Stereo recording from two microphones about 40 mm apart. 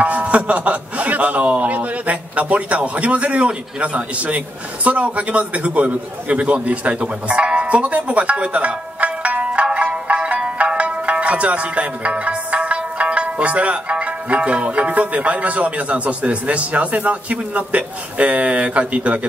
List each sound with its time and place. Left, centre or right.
0.0 s a man's voice: right